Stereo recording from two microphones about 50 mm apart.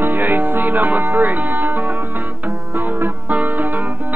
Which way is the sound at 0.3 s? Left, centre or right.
Right.